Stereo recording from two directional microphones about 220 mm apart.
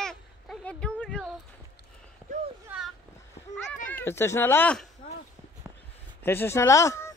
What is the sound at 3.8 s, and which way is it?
Speech, 10° left (ahead or behind).